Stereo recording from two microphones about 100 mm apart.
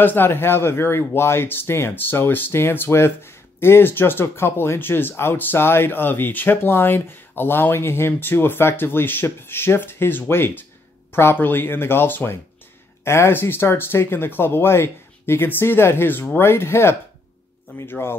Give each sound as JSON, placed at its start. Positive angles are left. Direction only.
{"t": 0.0, "sound": "speech", "side_deg": 20}